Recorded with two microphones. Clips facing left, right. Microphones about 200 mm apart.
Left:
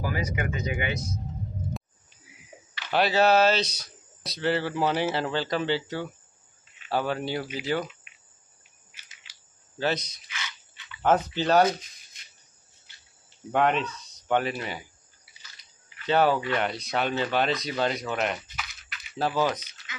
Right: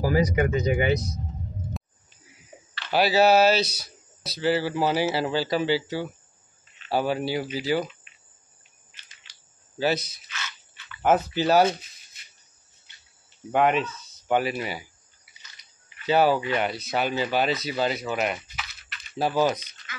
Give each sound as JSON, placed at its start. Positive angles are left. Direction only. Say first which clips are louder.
{"t": 0.0, "sound": "speech", "louder": "right 8 dB", "side_deg": -35}
{"t": 2.9, "sound": "speech", "louder": "right 2 dB", "side_deg": -5}
{"t": 8.9, "sound": "cricket", "louder": "even", "side_deg": 10}
{"t": 9.8, "sound": "speech", "louder": "right 3 dB", "side_deg": -10}
{"t": 10.2, "sound": "a sound", "louder": "right 1 dB", "side_deg": 15}
{"t": 11.0, "sound": "speech", "louder": "right 2 dB", "side_deg": -10}
{"t": 13.5, "sound": "speech", "louder": "right 2 dB", "side_deg": -5}
{"t": 16.1, "sound": "speech", "louder": "right 2 dB", "side_deg": -5}
{"t": 19.9, "sound": "beatboxing", "louder": "right 1 dB", "side_deg": 20}